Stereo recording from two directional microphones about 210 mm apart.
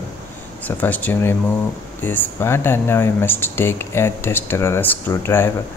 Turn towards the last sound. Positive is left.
turn(degrees=10)  # may be behind; listen again after turning